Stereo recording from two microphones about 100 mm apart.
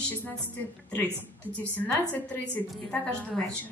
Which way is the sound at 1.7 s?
15° left (ahead or behind).